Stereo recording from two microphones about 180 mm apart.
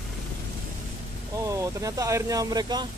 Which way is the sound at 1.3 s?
15° right (ahead or behind).